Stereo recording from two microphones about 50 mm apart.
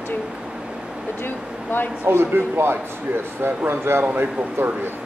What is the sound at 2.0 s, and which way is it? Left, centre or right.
Speech, right.